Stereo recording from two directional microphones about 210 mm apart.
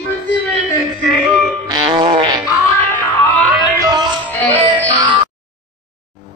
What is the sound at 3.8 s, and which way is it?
Music, 20° right (ahead or behind).